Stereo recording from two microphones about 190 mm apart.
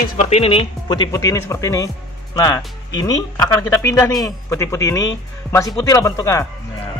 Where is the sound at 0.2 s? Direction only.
35° left (ahead or behind).